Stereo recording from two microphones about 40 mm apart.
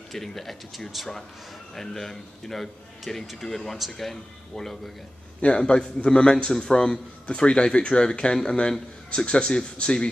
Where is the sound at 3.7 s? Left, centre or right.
Centre.